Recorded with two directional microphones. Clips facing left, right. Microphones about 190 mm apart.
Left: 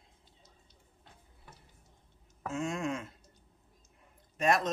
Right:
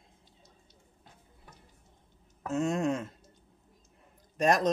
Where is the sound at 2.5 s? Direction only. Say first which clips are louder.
Right 6 dB; 40° right (ahead or behind).